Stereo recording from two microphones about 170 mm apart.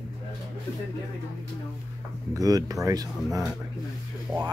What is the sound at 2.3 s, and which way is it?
Speech, 20° right (ahead or behind).